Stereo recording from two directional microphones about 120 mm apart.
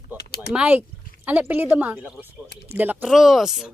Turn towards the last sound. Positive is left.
turn(degrees=0)  # may be behind; listen again after turning